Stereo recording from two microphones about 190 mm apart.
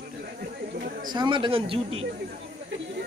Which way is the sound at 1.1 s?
25° right (ahead or behind).